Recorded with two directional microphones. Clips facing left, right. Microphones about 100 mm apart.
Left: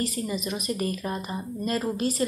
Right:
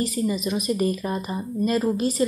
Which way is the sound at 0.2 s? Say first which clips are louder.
Right 6 dB; 20° right (ahead or behind).